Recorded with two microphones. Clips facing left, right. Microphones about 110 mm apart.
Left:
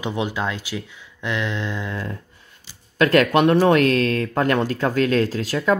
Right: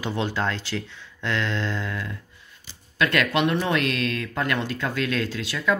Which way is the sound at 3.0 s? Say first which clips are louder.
Left 6 dB; 40° left (ahead or behind).